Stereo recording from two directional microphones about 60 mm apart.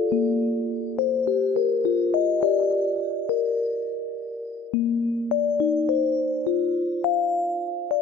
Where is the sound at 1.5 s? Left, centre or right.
Right.